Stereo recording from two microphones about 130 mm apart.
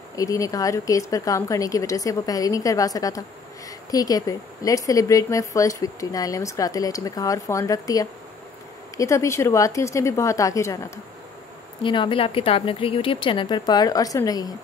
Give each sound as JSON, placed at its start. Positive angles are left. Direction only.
{"t": 0.1, "sound": "a woman's voice", "side_deg": 25}
{"t": 11.8, "sound": "a woman's voice", "side_deg": 40}